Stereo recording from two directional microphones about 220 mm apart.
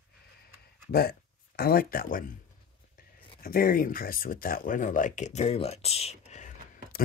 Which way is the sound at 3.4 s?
40° left (ahead or behind).